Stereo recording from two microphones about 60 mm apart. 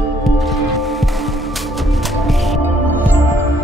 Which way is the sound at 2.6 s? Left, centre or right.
Right.